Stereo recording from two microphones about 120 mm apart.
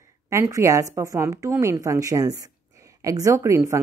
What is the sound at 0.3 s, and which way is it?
Speech, 25° right (ahead or behind).